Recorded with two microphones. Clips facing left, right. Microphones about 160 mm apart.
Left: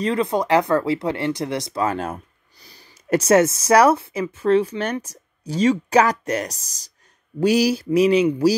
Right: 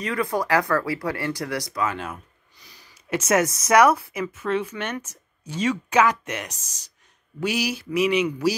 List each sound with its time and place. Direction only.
0.0 s speech: 25° left (ahead or behind)
1.8 s speech: 40° left (ahead or behind)